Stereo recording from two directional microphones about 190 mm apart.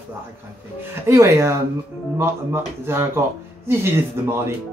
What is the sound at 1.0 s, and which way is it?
Speech, 15° right (ahead or behind).